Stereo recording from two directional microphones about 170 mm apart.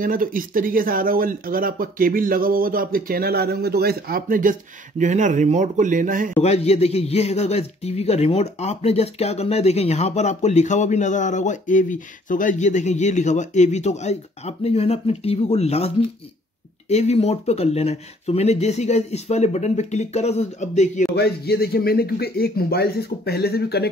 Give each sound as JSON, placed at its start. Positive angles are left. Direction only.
{"t": 0.0, "sound": "speech", "side_deg": -55}
{"t": 6.4, "sound": "a man's voice", "side_deg": 40}
{"t": 16.9, "sound": "a man's voice", "side_deg": 40}
{"t": 21.2, "sound": "speech", "side_deg": 70}